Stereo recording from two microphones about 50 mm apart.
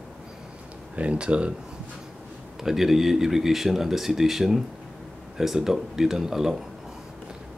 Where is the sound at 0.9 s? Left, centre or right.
Right.